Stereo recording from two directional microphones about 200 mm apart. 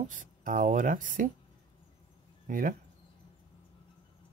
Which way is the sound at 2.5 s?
45° right (ahead or behind).